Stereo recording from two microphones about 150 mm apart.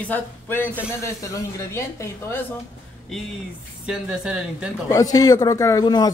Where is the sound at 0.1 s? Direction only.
15° left (ahead or behind).